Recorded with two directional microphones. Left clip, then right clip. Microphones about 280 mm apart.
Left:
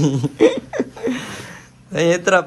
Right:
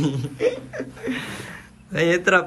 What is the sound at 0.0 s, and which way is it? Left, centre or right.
Speech, centre.